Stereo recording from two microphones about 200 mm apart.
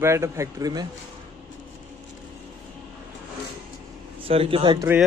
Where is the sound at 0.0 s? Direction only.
15° right (ahead or behind).